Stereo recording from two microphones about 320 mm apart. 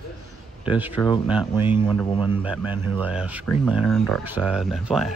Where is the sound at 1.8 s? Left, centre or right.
Centre.